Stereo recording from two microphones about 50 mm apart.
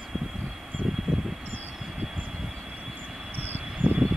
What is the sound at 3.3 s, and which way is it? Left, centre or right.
Vehicle, right.